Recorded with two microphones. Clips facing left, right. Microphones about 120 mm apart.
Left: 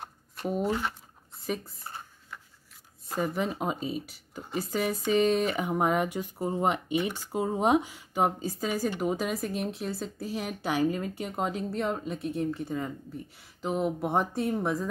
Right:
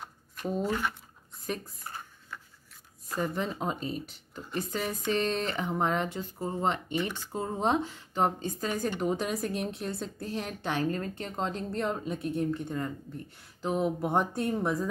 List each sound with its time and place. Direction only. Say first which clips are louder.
0.7 s speech: left 1 dB; 20° left (ahead or behind)
1.4 s speech: left 2 dB; centre (ahead or behind)
1.9 s a sound: even; 25° left (ahead or behind)
3.2 s speech: left 2 dB; 5° left (ahead or behind)